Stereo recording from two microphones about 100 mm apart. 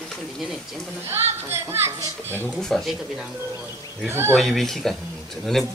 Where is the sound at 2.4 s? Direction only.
5° left (ahead or behind).